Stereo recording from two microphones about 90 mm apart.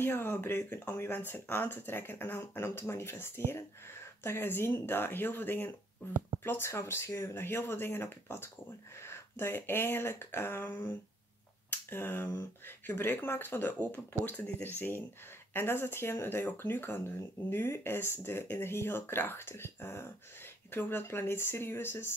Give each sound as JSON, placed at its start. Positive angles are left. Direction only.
{"t": 0.0, "sound": "speech", "side_deg": 25}